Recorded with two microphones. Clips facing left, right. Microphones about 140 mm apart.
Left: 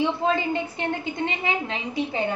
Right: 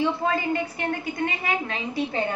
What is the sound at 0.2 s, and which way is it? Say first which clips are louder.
A woman's voice: left 1 dB; 20° left (ahead or behind).